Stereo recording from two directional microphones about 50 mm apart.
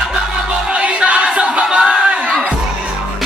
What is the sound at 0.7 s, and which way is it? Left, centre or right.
Music, right.